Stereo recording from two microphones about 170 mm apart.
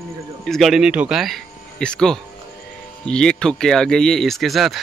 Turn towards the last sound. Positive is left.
turn(degrees=0)  # may be behind; listen again after turning